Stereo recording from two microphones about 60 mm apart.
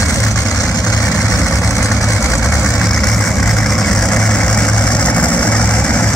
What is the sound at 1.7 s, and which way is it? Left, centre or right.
Vehicle, left.